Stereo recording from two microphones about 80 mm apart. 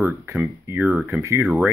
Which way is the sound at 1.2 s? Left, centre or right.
Right.